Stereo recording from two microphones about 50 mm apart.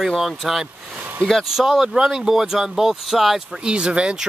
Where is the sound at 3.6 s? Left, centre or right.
Centre.